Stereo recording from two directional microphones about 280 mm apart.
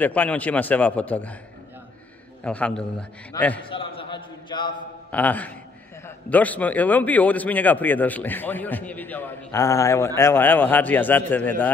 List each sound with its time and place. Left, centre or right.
0.0 s a man's voice: centre
2.4 s a man's voice: centre
3.7 s a sound: centre
5.1 s a man's voice: centre